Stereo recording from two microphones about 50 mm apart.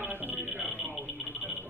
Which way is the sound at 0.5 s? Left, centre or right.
Left.